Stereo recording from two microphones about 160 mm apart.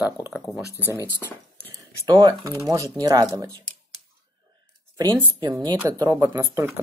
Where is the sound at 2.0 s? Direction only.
25° right (ahead or behind).